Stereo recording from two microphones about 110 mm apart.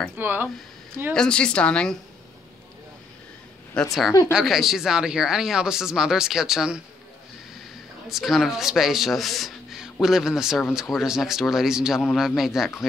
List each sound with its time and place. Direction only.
0.2 s speech: 15° right (ahead or behind)
1.1 s a woman's voice: 5° left (ahead or behind)
3.8 s a woman's voice: 10° left (ahead or behind)
4.3 s speech: 5° right (ahead or behind)
8.1 s speech: centre (ahead or behind)